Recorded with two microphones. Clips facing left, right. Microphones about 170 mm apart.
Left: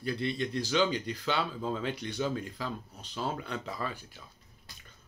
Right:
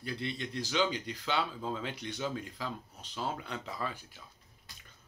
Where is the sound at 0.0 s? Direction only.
15° right (ahead or behind).